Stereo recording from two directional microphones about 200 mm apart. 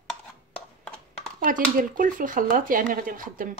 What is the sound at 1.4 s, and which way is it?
A woman's voice, 40° right (ahead or behind).